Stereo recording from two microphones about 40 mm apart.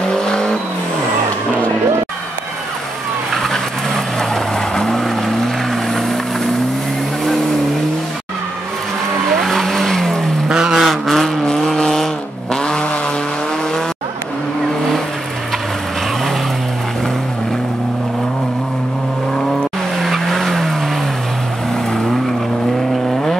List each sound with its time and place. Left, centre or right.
0.1 s vehicle: centre
3.3 s vehicle: centre
9.4 s vehicle: centre
10.7 s vehicle: centre
20.0 s vehicle: centre